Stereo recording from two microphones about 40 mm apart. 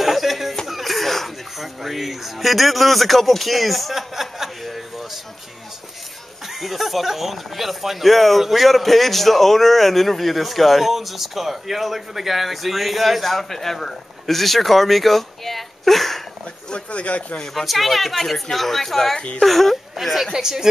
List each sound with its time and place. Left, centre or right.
0.0 s a sound: centre
0.7 s speech: centre
6.4 s speech: centre
16.7 s speech: left
17.6 s speech: centre
20.3 s speech: centre